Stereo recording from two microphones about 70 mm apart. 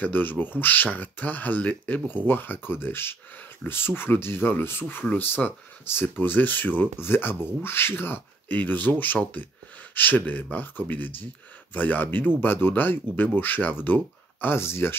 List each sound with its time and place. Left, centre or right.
0.0 s speech: left